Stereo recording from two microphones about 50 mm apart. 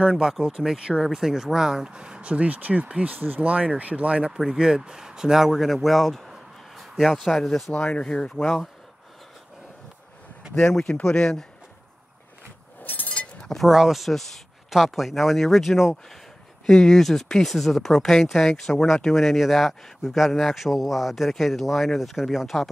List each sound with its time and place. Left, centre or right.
0.0 s speech: centre
1.1 s speech: centre; by 4.3 s right
4.3 s speech: centre
4.6 s speech: centre
7.7 s speech: left
8.0 s speech: centre
10.6 s speech: centre
12.8 s a sound: left
13.1 s a sound: left
13.7 s speech: centre
19.1 s speech: centre